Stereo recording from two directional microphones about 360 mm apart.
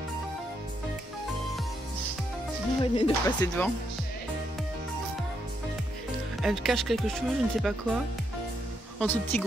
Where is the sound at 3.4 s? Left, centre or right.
Centre.